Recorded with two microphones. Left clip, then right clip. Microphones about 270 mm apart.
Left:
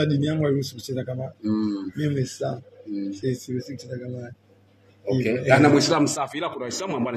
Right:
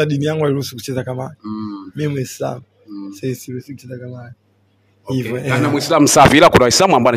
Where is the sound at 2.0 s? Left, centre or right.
Right.